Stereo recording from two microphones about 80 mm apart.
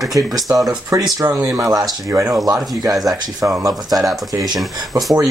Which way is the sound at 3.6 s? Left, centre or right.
Right.